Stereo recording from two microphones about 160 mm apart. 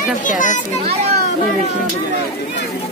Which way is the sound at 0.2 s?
55° left (ahead or behind).